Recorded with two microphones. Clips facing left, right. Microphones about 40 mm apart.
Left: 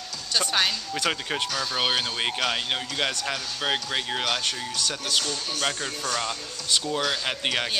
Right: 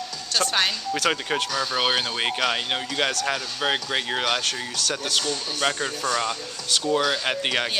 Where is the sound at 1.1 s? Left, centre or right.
Centre.